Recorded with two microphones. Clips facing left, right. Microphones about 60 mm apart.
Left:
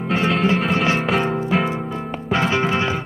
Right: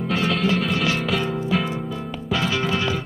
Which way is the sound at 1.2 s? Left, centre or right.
Left.